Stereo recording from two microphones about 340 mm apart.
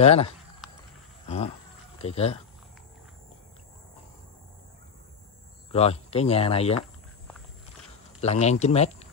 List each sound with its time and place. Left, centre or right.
0.0 s speech: centre
2.0 s speech: centre
5.7 s speech: centre
8.2 s speech: centre